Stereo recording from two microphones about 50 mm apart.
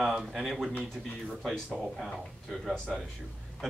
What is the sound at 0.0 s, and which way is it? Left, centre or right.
Speech, centre.